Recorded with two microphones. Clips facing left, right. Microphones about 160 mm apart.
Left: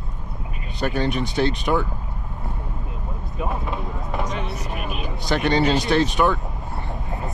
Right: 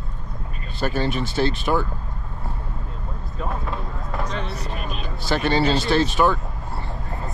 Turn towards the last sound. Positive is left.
turn(degrees=20)  # may be behind; listen again after turning